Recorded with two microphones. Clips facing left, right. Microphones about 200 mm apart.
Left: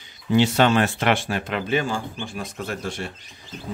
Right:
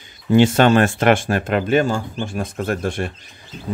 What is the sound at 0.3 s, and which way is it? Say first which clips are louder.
Speech: right 5 dB; 50° right (ahead or behind).